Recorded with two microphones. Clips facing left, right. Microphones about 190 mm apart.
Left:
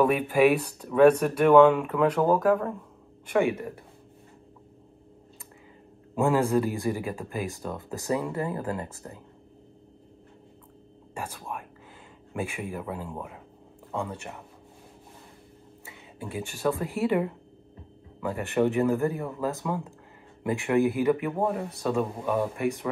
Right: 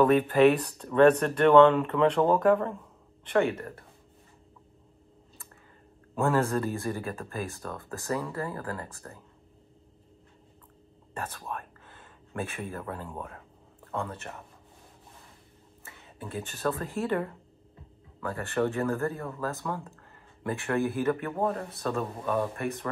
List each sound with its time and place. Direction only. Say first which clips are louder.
0.0 s speech: right 1 dB; 10° left (ahead or behind)
6.1 s speech: left 3 dB; 15° left (ahead or behind)
11.1 s speech: left 1 dB; 10° left (ahead or behind)
15.8 s speech: left 3 dB; 15° left (ahead or behind)